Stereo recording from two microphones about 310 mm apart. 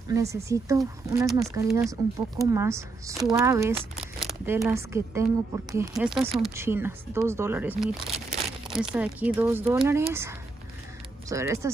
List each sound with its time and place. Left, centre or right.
0.1 s speech: centre